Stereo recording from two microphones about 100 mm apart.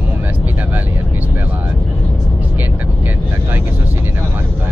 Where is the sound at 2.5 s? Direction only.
20° right (ahead or behind).